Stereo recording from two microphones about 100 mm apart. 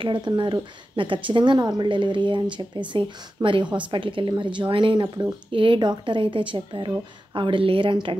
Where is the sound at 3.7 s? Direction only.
55° right (ahead or behind).